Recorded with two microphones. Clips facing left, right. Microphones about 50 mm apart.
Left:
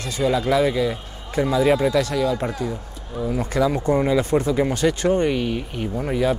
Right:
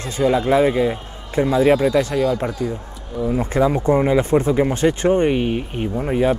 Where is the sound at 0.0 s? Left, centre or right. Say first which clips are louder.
Right 3 dB; right.